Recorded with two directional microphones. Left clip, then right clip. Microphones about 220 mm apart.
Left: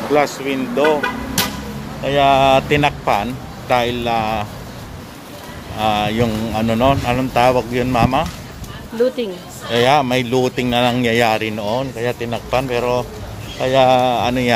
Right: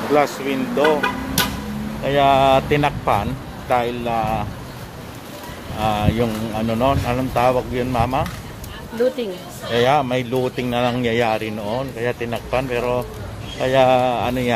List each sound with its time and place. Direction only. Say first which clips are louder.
0.1 s speech: left 1 dB; 5° left (ahead or behind)
2.0 s speech: left 2 dB; 5° left (ahead or behind)
5.8 s speech: left 3 dB; 10° left (ahead or behind)
9.7 s speech: left 3 dB; 15° left (ahead or behind)
13.6 s speech: left 2 dB; 5° left (ahead or behind)